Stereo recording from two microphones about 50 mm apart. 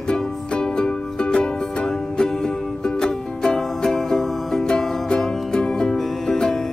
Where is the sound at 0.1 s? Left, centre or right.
Centre.